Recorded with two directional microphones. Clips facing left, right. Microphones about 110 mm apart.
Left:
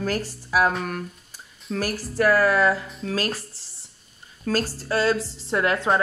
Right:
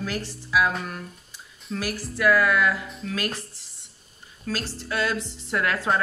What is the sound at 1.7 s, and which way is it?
Speech, 40° left (ahead or behind).